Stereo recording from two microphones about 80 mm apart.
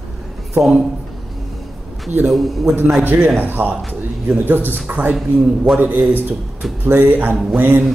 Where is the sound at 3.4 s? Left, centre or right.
Right.